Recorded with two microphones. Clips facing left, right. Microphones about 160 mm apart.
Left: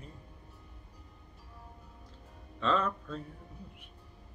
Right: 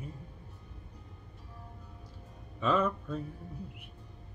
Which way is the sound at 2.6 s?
10° right (ahead or behind).